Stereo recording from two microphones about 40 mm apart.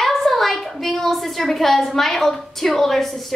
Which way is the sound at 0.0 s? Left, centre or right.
Centre.